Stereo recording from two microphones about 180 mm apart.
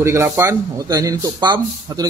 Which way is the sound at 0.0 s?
15° right (ahead or behind).